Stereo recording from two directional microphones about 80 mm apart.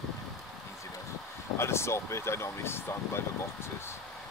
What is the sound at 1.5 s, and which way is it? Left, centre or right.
Speech, left.